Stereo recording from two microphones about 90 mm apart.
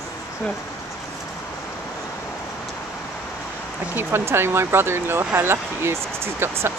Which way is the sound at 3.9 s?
25° right (ahead or behind).